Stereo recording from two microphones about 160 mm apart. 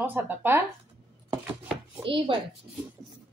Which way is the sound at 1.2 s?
15° right (ahead or behind).